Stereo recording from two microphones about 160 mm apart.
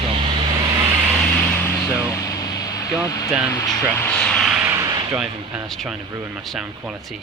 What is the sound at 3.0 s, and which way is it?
Speech, 20° left (ahead or behind).